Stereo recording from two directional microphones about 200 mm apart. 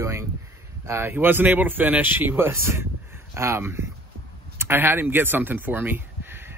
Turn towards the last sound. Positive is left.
turn(degrees=-10)  # may be behind; listen again after turning